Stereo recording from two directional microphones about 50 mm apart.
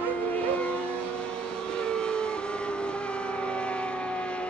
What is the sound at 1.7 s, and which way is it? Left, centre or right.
Vehicle, centre.